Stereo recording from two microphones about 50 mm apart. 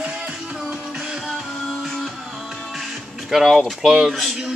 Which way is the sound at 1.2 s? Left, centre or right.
Centre.